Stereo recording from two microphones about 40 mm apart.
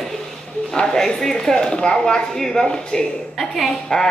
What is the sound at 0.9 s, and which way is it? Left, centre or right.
Speech, centre.